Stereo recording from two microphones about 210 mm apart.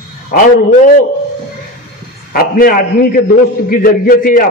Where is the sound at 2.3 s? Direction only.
45° left (ahead or behind).